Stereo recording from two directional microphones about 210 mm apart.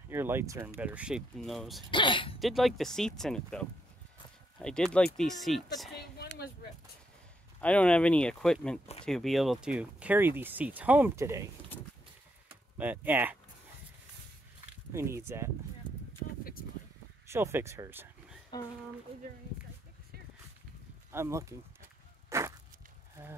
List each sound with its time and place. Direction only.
0.1 s speech: 10° right (ahead or behind)
1.9 s speech: 25° left (ahead or behind)
2.4 s speech: centre (ahead or behind)
6.1 s a sound: 50° left (ahead or behind)
7.6 s speech: 5° left (ahead or behind); by 11.4 s 15° right (ahead or behind)
12.7 s speech: 10° right (ahead or behind)
14.9 s speech: 15° right (ahead or behind)
16.2 s a sound: 45° left (ahead or behind)
17.3 s speech: 10° right (ahead or behind)
21.1 s speech: 15° right (ahead or behind)
22.3 s walk: 15° right (ahead or behind)